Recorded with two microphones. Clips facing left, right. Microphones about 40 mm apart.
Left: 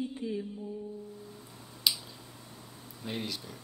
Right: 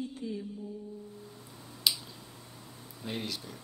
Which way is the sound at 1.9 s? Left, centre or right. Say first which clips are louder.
Even; centre.